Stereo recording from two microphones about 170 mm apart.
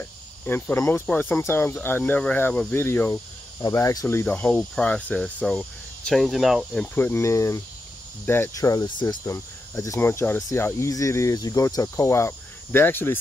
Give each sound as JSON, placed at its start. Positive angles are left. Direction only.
{"t": 0.0, "sound": "speech", "side_deg": 10}